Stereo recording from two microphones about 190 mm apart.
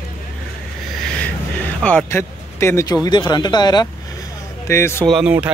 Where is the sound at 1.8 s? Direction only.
5° left (ahead or behind).